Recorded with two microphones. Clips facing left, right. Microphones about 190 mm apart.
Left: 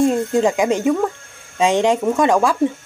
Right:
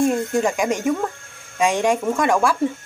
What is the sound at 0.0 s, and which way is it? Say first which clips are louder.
Speech: left 3 dB; 20° left (ahead or behind).